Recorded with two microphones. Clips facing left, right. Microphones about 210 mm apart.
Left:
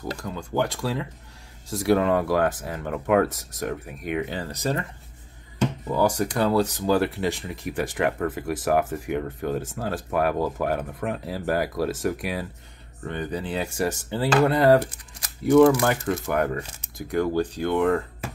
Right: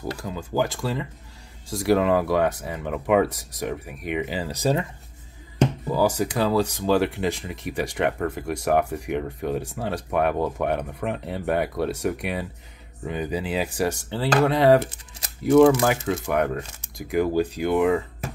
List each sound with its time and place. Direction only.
0.2 s speech: 5° right (ahead or behind)
5.9 s speech: 5° right (ahead or behind)
14.8 s speech: 25° right (ahead or behind)
15.8 s speech: centre (ahead or behind)